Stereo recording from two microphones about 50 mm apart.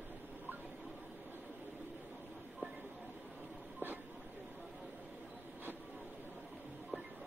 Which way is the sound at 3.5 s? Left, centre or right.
Centre.